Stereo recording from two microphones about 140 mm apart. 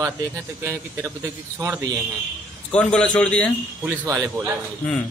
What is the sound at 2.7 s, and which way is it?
Speech, 5° left (ahead or behind).